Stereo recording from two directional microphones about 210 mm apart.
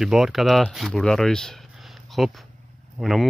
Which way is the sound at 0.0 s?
Centre (ahead or behind).